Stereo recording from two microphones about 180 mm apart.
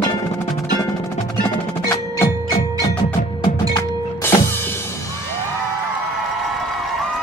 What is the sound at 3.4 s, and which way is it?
Music, 25° left (ahead or behind).